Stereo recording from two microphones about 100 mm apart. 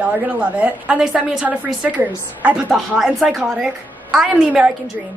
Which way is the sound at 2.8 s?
Centre (ahead or behind).